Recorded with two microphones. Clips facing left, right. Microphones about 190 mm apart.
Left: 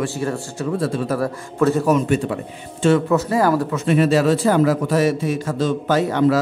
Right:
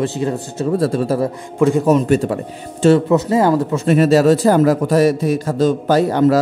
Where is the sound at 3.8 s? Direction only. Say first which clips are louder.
Right 4 dB; 40° right (ahead or behind).